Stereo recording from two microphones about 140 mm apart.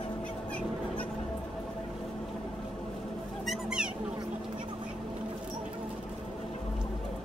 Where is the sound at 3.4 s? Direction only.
5° right (ahead or behind).